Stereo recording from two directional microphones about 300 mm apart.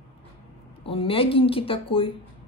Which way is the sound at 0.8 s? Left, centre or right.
Centre.